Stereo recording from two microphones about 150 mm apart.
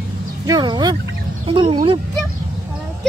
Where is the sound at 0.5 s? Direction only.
30° right (ahead or behind).